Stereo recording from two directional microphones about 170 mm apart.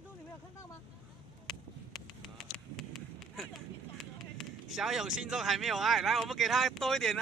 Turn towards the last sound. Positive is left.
turn(degrees=0)  # may be behind; listen again after turning